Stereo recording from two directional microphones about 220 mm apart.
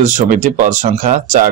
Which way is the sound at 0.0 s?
35° right (ahead or behind).